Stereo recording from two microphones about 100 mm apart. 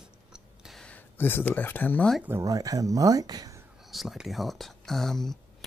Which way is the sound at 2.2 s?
25° right (ahead or behind).